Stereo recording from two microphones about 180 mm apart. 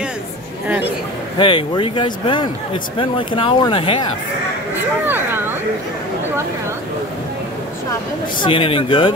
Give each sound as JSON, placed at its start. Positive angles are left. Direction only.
{"t": 1.4, "sound": "speech", "side_deg": 30}
{"t": 5.0, "sound": "a sound", "side_deg": -10}
{"t": 8.4, "sound": "speech", "side_deg": 30}